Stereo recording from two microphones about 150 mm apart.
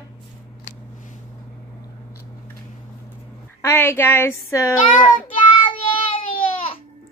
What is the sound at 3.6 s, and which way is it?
Speech, 20° left (ahead or behind).